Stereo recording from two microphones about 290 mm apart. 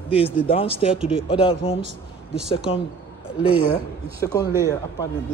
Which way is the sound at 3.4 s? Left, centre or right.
Centre.